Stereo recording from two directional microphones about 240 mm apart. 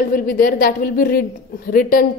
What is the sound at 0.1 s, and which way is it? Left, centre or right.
A woman's voice, left.